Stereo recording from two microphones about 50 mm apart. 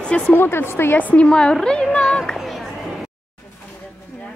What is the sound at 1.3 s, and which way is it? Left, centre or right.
Speech, centre.